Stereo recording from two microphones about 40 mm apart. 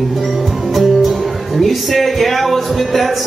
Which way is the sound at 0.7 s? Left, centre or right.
Centre.